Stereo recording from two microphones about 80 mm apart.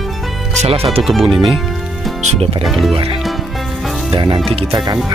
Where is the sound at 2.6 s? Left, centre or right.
Centre.